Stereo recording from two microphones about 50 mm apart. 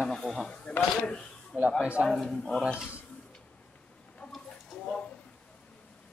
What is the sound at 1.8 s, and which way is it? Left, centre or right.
Speech, right.